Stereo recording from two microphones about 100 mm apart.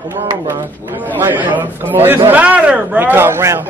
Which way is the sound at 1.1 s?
20° right (ahead or behind).